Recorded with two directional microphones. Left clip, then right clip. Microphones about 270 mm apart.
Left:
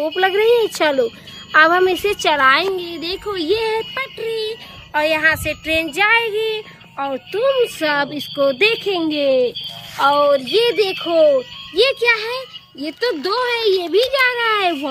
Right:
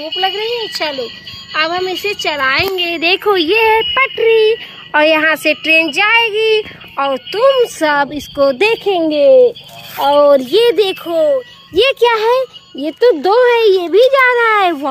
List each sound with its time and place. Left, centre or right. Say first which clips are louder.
0.0 s a woman's voice: left 1 dB; centre
2.9 s a child's voice: right 12 dB; centre
8.8 s speech: right 8 dB; centre
10.5 s a woman's voice: right 5 dB; right
11.7 s a child's voice: right 4 dB; centre